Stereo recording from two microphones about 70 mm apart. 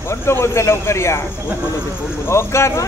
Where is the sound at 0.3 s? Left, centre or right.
Left.